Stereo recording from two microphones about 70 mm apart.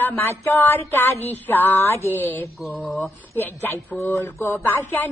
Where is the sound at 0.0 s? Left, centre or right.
Left.